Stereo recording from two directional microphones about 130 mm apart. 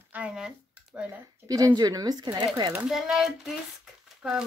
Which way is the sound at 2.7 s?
5° right (ahead or behind).